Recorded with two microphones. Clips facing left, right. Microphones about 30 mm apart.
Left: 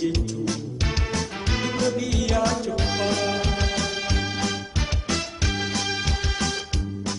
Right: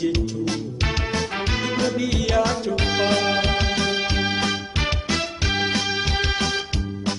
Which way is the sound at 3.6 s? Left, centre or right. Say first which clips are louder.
Right 4 dB; right.